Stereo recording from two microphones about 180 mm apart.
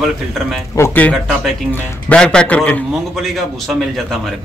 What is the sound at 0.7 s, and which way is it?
A man's voice, 10° left (ahead or behind).